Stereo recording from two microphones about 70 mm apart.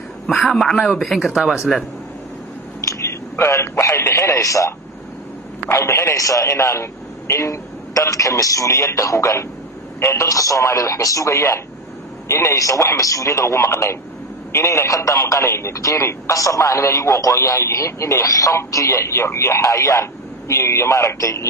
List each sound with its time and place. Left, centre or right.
0.5 s speech: centre
2.9 s a sound: left
4.0 s speech: left
5.7 s a man's voice: left
10.2 s speech: left